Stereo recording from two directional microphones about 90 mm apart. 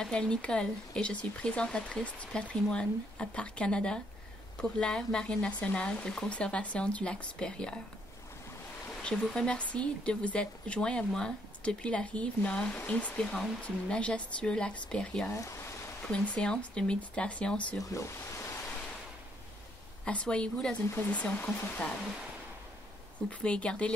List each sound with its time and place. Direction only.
0.0 s speech: 10° left (ahead or behind)
9.0 s speech: 10° left (ahead or behind)
15.2 s a sound: 30° left (ahead or behind)
16.0 s speech: 10° left (ahead or behind)
17.9 s speech: 35° left (ahead or behind)
20.1 s speech: 10° left (ahead or behind)
20.9 s speech: 20° left (ahead or behind)
23.4 s speech: 10° left (ahead or behind)